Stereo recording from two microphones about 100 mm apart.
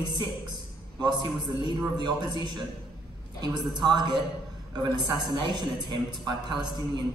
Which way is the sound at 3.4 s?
45° right (ahead or behind).